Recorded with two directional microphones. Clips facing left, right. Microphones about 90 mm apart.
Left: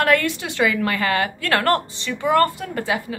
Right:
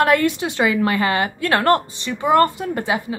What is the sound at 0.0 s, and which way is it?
A woman's voice, 20° right (ahead or behind).